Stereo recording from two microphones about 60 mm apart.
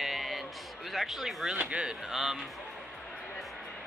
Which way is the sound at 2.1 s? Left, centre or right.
Centre.